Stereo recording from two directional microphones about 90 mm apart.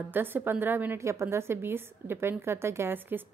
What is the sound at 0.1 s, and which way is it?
A woman's voice, 20° right (ahead or behind).